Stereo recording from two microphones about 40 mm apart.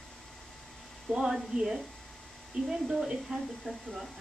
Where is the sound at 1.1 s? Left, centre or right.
Centre.